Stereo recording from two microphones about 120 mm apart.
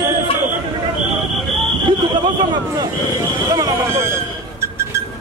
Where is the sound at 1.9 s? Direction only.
40° right (ahead or behind).